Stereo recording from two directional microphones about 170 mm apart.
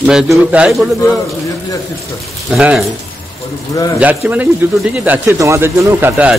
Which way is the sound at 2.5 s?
5° right (ahead or behind).